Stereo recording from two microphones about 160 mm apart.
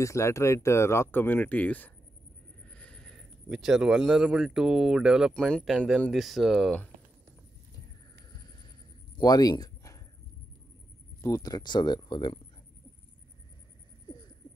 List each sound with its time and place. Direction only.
0.0 s speech: 20° left (ahead or behind)
9.2 s a sound: 25° left (ahead or behind)
11.1 s speech: 20° left (ahead or behind)